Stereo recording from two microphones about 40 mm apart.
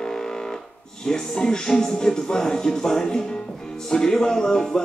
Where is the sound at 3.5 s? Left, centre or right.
Centre.